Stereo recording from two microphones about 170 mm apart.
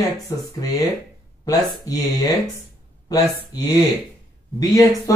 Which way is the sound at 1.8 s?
20° left (ahead or behind).